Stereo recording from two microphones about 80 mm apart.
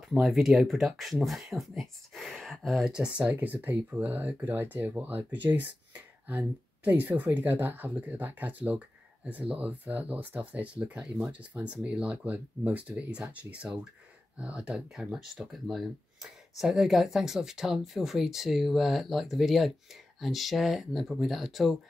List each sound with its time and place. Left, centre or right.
0.2 s speech: centre